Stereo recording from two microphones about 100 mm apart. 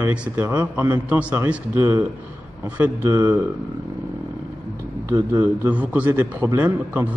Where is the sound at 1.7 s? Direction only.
30° right (ahead or behind).